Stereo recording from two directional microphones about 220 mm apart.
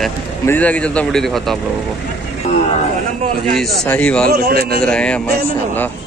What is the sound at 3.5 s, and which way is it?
Speech, centre (ahead or behind).